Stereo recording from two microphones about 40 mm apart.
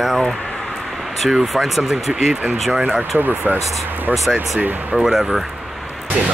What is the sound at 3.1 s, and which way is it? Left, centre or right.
Speech, right.